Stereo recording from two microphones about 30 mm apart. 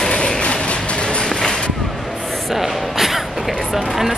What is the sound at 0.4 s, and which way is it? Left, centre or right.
Music, left.